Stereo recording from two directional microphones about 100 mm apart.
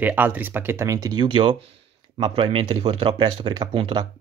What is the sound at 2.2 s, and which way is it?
Speech, 65° right (ahead or behind).